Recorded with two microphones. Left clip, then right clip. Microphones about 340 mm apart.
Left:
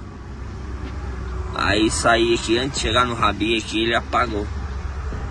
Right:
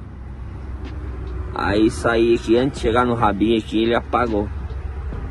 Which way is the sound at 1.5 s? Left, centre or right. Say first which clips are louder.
Right 1 dB; centre.